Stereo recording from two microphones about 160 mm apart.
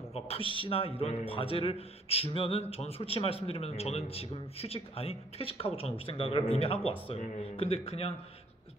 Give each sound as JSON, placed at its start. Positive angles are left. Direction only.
{"t": 0.1, "sound": "a man's voice", "side_deg": 35}